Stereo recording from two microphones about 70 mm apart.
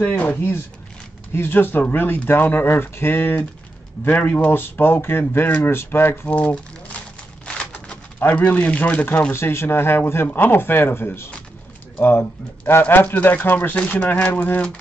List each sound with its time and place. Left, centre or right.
0.0 s speech: left
1.3 s speech: left
6.3 s a sound: centre
7.4 s pigeon: centre
8.3 s speech: left